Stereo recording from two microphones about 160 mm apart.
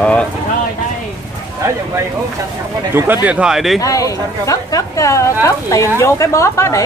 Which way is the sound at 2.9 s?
10° right (ahead or behind).